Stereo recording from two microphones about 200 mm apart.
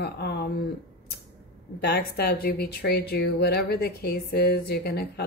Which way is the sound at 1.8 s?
55° left (ahead or behind).